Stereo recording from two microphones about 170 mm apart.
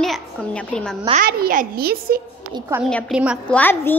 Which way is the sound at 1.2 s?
55° right (ahead or behind).